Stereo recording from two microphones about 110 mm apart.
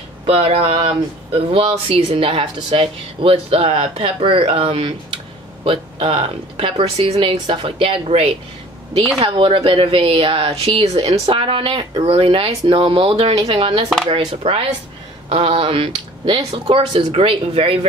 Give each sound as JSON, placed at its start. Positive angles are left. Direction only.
{"t": 0.3, "sound": "speech", "side_deg": -60}
{"t": 7.3, "sound": "a woman's voice", "side_deg": -40}
{"t": 7.8, "sound": "speech", "side_deg": -60}